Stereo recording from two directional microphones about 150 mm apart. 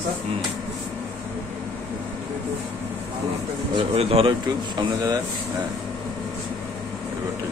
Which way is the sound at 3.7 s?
40° right (ahead or behind).